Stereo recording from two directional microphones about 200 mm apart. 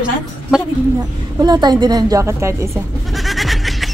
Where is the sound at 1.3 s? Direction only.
20° right (ahead or behind).